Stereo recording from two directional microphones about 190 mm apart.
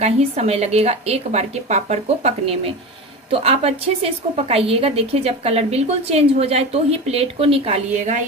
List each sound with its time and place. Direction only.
0.0 s a woman's voice: 35° right (ahead or behind)